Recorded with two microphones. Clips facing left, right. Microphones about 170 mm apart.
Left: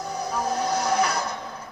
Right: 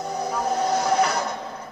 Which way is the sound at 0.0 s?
20° right (ahead or behind).